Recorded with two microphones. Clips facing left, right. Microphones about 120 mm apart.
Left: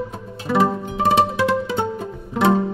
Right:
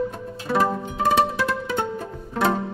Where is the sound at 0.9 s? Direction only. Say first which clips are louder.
Left 3 dB; 25° left (ahead or behind).